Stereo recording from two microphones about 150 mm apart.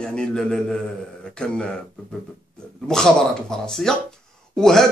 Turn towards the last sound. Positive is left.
turn(degrees=5)  # may be behind; listen again after turning